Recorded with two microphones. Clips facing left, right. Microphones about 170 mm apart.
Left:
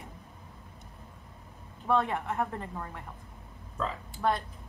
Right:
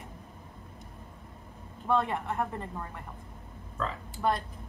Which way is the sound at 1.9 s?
Centre (ahead or behind).